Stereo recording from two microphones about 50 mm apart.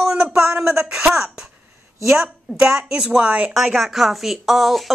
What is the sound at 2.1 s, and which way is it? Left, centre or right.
Speech, centre.